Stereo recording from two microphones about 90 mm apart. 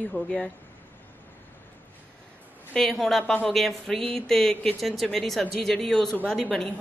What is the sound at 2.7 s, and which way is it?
A woman's voice, 5° left (ahead or behind).